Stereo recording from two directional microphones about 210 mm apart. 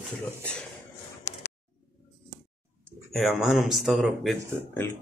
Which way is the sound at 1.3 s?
35° left (ahead or behind).